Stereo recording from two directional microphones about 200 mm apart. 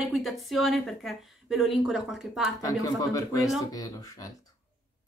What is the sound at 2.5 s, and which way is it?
Speech, 15° left (ahead or behind).